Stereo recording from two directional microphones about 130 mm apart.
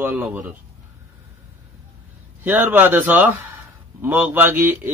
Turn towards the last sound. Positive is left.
turn(degrees=-15)  # may be behind; listen again after turning